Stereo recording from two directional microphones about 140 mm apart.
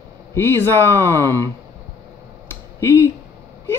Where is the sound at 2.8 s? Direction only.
20° left (ahead or behind).